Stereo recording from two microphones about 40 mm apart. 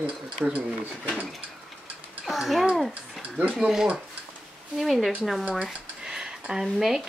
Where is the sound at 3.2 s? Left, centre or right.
Right.